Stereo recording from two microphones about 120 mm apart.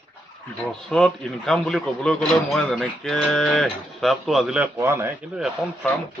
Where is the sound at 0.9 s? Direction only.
5° left (ahead or behind).